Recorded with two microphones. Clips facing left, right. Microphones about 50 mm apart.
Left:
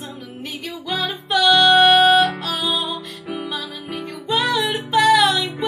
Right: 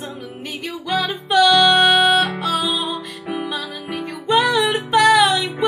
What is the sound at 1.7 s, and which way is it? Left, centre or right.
Music, centre.